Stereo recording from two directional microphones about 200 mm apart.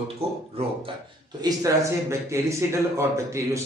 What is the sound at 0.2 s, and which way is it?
Speech, 30° right (ahead or behind).